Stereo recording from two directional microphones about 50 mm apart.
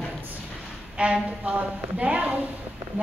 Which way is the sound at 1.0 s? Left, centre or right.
Right.